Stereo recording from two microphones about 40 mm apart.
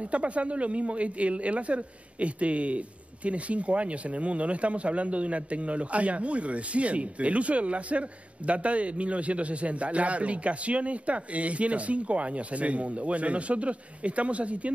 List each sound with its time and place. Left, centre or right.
0.1 s a man's voice: right